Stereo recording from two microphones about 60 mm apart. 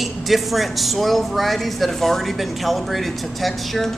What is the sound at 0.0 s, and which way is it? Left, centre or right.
Speech, centre.